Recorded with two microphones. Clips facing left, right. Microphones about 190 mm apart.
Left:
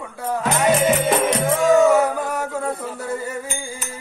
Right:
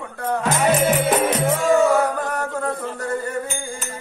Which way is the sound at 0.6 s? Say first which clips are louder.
Left 1 dB; 5° right (ahead or behind).